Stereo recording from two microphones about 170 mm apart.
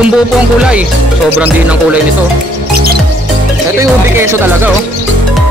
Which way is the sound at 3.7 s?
15° right (ahead or behind).